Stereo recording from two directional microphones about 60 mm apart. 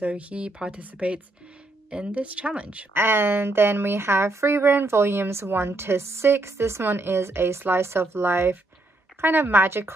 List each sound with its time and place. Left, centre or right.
0.0 s speech: right
2.9 s a woman's voice: right